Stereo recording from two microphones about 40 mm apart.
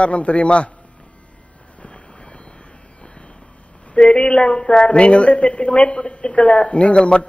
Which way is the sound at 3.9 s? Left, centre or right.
Left.